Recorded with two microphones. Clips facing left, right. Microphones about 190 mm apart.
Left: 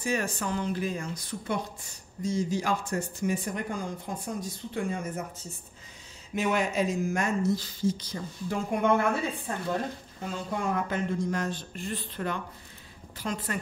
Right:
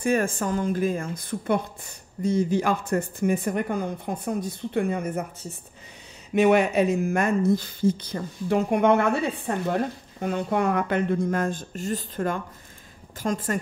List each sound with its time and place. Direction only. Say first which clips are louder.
0.0 s speech: right 6 dB; 50° right (ahead or behind)
6.3 s a woman's voice: right 8 dB; 65° right (ahead or behind); by 13.6 s 45° right (ahead or behind)